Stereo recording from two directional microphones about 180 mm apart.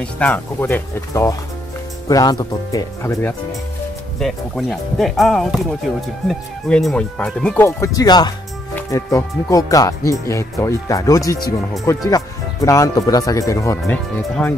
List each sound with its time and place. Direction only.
0.0 s speech: 5° left (ahead or behind)
4.2 s speech: centre (ahead or behind)
7.6 s speech: 20° left (ahead or behind)